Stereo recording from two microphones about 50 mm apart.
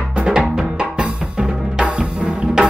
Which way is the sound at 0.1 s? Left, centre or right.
Centre.